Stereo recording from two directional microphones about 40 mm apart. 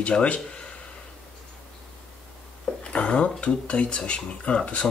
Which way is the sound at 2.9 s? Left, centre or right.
Left.